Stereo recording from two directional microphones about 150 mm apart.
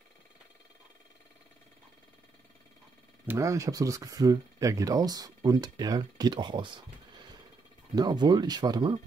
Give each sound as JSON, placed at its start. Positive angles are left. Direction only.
{"t": 3.3, "sound": "speech", "side_deg": -20}
{"t": 7.9, "sound": "speech", "side_deg": -25}